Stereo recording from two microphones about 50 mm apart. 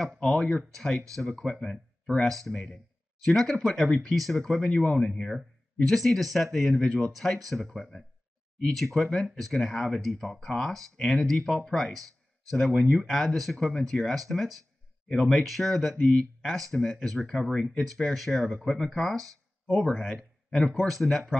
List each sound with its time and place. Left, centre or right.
0.2 s speech: centre
6.8 s speech: centre
7.1 s speech: centre
8.7 s speech: centre
16.0 s speech: centre
16.3 s speech: centre